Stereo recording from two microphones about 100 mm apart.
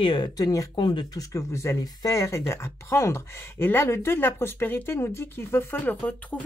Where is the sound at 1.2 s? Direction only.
30° left (ahead or behind); by 6.5 s 15° left (ahead or behind).